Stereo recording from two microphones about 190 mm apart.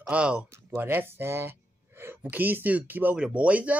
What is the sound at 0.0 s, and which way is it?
Speech, 5° right (ahead or behind).